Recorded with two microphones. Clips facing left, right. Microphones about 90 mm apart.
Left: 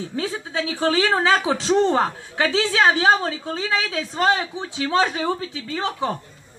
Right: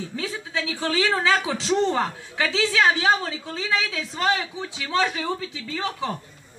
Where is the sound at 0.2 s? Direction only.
35° left (ahead or behind).